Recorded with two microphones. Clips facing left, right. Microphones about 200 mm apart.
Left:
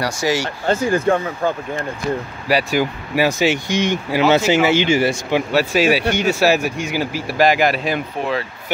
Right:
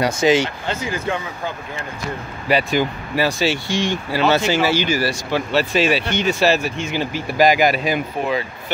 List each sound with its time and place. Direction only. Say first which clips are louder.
0.0 s speech: right 4 dB; 20° right (ahead or behind)
0.7 s speech: left 7 dB; 50° left (ahead or behind)
2.4 s speech: even; 5° left (ahead or behind); by 5.4 s 25° left (ahead or behind)
5.5 s speech: left 1 dB; 10° left (ahead or behind)